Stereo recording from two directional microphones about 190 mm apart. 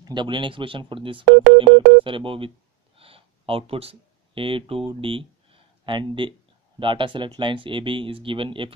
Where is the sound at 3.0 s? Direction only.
30° right (ahead or behind).